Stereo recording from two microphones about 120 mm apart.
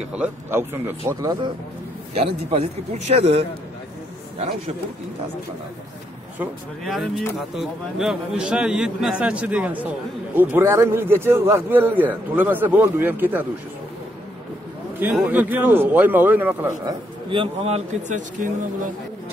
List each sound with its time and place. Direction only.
0.1 s speech: 15° right (ahead or behind)
2.1 s speech: 55° right (ahead or behind)
6.8 s a man's voice: centre (ahead or behind); by 13.5 s 15° right (ahead or behind)
15.0 s a man's voice: 15° right (ahead or behind)
17.3 s speech: 55° right (ahead or behind); by 18.5 s 90° right